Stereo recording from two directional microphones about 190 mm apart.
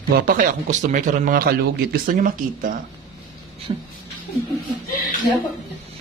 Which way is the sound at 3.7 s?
35° right (ahead or behind).